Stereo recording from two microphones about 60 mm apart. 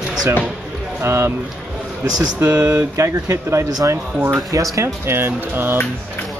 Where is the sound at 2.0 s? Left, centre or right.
Right.